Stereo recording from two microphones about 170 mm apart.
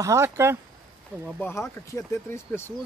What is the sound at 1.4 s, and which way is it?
Speech, 15° left (ahead or behind).